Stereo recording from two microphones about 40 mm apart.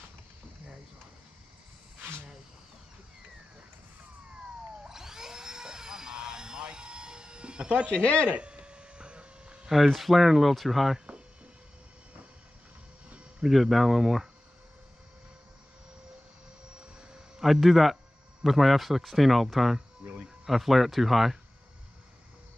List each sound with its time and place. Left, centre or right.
4.8 s a sound: centre
8.0 s speech: left
8.4 s hum: right
9.8 s speech: centre
13.4 s speech: centre
17.4 s speech: centre